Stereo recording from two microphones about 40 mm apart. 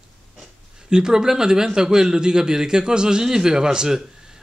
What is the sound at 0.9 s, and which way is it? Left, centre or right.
A man's voice, centre.